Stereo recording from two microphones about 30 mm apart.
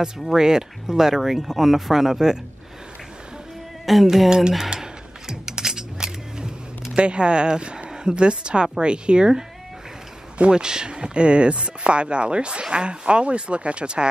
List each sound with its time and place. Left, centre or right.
0.4 s speech: right
3.8 s speech: centre
5.3 s music: centre
7.0 s a woman's voice: right
10.5 s speech: right